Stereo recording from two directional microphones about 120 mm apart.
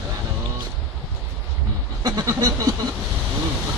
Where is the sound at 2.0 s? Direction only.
35° right (ahead or behind).